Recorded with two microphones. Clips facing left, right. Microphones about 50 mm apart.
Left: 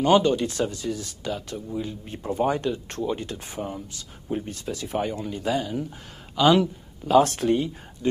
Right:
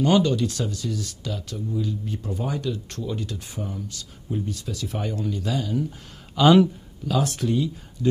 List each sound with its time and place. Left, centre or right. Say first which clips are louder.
0.0 s speech: left 1 dB; left
5.0 s speech: left 1 dB; left
6.3 s speech: right 3 dB; centre
7.3 s speech: left 2 dB; left